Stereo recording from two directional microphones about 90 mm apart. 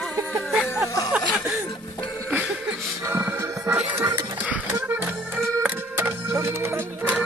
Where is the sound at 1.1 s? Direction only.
Centre (ahead or behind).